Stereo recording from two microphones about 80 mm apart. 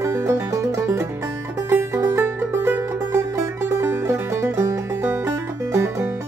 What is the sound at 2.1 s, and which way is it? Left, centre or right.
Music, right.